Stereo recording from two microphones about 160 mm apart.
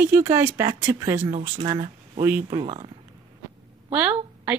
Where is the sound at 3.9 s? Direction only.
10° right (ahead or behind).